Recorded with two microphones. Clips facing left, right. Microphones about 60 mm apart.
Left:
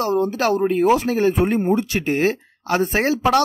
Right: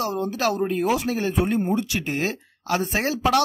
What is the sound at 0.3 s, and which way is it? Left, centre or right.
Speech, left.